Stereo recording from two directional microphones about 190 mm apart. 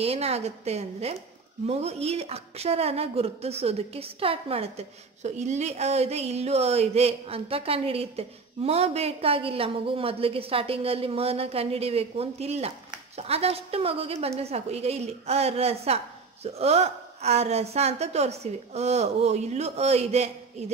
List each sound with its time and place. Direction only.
0.0 s a woman's voice: 30° right (ahead or behind)